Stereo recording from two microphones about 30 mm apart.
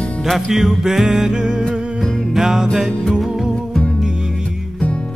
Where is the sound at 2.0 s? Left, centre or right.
Centre.